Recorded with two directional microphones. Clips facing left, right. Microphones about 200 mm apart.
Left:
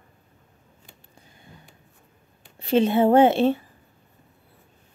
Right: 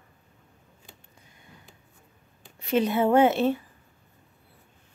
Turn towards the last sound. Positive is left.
turn(degrees=30)  # may be behind; listen again after turning